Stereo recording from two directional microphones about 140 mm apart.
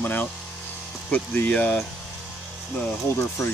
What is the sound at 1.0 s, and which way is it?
Speech, 10° left (ahead or behind).